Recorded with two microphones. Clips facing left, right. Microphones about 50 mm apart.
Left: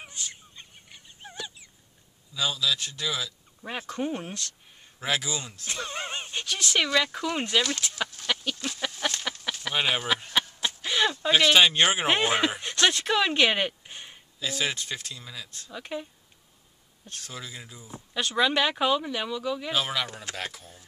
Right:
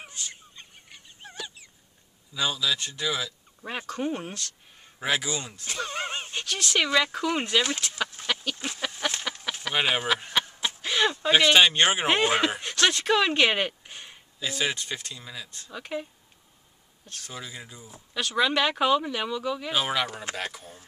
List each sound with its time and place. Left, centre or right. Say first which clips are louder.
0.0 s fowl: even; centre
2.3 s speech: even; centre
3.6 s speech: right 1 dB; centre
8.2 s a sound: even; right; by 10.0 s centre
10.6 s speech: right 2 dB; centre
17.2 s speech: right 1 dB; centre
18.1 s speech: even; centre